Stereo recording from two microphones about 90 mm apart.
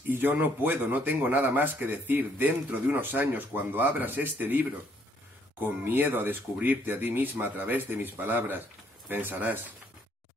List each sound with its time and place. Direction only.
0.1 s speech: 20° right (ahead or behind)